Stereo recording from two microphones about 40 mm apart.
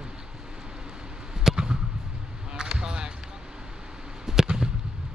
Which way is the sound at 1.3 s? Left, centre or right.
Centre.